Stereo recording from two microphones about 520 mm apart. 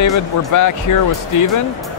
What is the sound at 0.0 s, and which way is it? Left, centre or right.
Speech, left.